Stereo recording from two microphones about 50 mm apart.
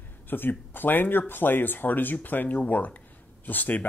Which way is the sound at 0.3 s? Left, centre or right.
Left.